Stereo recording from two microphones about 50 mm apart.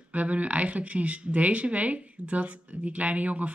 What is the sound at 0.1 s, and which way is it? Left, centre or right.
Speech, right.